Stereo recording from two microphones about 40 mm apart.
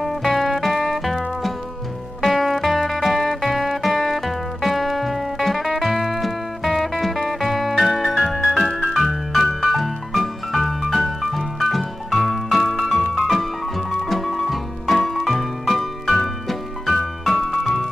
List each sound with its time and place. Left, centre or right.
0.0 s music: centre